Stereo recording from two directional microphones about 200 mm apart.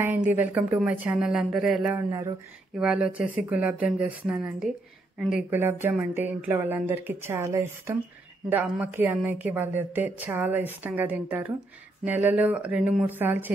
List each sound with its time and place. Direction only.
0.3 s speech: 10° right (ahead or behind)
2.0 s a woman's voice: 15° right (ahead or behind)
2.8 s a woman's voice: 5° right (ahead or behind)